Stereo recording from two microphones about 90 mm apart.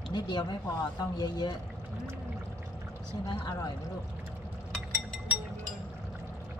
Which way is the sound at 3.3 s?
55° left (ahead or behind).